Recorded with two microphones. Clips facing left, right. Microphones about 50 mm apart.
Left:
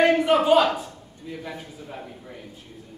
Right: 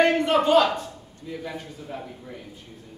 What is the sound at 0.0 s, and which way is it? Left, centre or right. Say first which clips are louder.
Speech: left 1 dB; centre.